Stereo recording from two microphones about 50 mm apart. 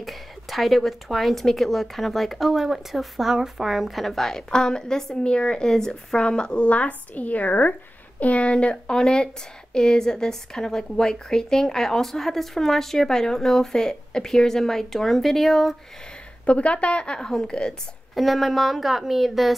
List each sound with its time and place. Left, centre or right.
0.0 s a woman's voice: centre
16.4 s a woman's voice: left
18.1 s speech: centre